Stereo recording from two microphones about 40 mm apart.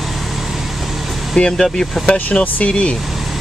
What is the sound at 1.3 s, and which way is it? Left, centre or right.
Speech, centre.